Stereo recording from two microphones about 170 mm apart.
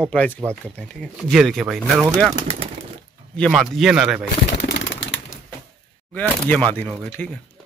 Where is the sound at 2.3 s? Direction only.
35° right (ahead or behind).